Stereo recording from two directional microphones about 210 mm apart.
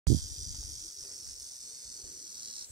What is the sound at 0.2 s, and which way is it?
Cricket, 15° right (ahead or behind).